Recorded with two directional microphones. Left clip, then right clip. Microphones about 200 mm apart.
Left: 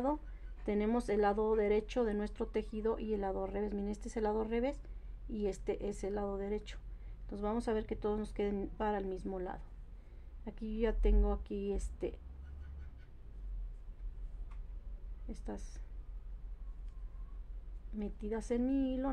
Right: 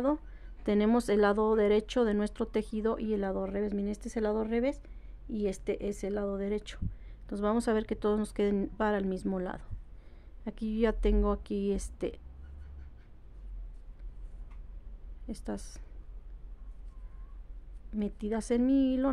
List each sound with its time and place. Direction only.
0.7 s speech: 40° right (ahead or behind)
15.2 s speech: 40° right (ahead or behind)
17.9 s speech: 40° right (ahead or behind)